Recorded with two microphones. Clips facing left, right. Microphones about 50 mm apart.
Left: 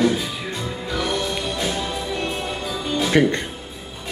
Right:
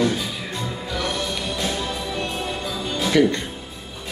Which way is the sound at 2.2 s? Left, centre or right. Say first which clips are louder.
Left 1 dB; centre.